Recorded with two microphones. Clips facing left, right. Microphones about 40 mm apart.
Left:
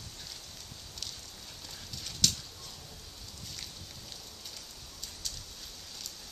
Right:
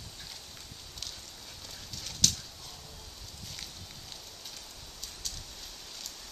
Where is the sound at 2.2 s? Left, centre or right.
Centre.